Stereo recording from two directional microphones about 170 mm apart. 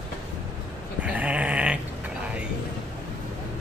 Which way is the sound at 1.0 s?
10° right (ahead or behind).